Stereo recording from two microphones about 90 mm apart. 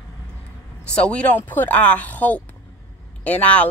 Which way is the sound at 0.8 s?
10° left (ahead or behind).